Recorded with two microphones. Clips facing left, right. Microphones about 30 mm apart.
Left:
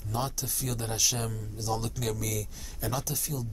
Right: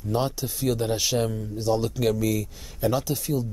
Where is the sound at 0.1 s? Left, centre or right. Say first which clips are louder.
Right 7 dB; right.